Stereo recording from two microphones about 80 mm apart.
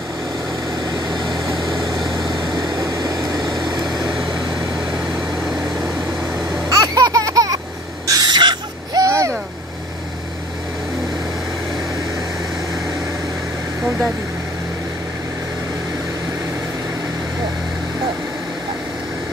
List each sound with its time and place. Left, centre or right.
2.5 s vehicle: right
3.6 s vehicle: right
6.7 s baby laughter: right
8.1 s a sound: right
9.0 s vehicle: right